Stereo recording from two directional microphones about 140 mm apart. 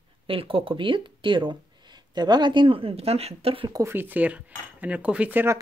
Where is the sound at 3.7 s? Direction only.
20° right (ahead or behind).